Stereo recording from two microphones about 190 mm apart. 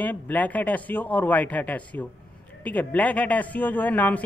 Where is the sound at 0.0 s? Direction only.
10° left (ahead or behind).